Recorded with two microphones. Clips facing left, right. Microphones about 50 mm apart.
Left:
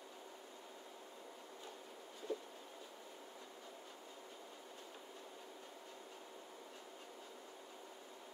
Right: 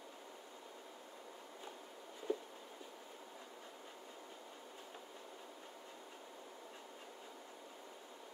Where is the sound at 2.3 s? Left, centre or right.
Centre.